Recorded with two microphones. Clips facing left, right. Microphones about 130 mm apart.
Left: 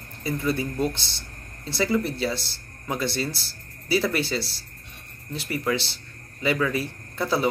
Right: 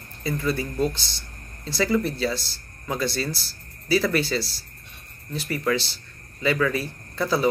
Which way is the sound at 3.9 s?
25° left (ahead or behind).